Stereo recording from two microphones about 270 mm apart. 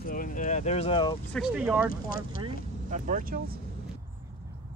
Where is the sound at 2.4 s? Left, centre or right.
Right.